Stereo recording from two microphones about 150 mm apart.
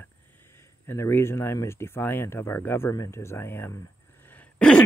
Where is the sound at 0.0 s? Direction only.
15° left (ahead or behind).